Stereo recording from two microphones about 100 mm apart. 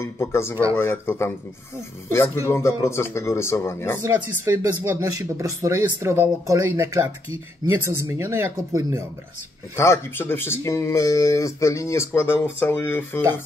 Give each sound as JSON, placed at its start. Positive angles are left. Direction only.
{"t": 0.0, "sound": "speech", "side_deg": 25}
{"t": 4.5, "sound": "speech", "side_deg": -30}
{"t": 9.8, "sound": "speech", "side_deg": 25}